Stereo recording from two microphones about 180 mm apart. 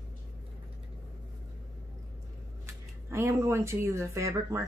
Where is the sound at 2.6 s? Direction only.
15° right (ahead or behind).